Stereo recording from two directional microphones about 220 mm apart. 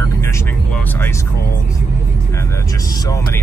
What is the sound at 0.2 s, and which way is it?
Vehicle, 10° left (ahead or behind).